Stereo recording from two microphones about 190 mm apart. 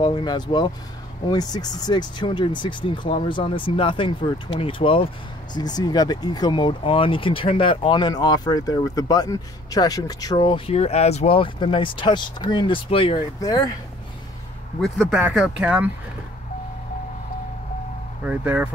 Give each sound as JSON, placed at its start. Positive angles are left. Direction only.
{"t": 0.0, "sound": "speech", "side_deg": 25}
{"t": 14.8, "sound": "speech", "side_deg": 0}
{"t": 18.2, "sound": "speech", "side_deg": -10}